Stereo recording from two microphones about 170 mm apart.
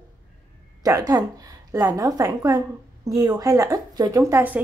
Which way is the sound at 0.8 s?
20° right (ahead or behind).